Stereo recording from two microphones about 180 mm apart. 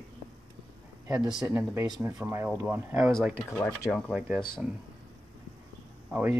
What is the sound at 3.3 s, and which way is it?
Speech, 5° left (ahead or behind).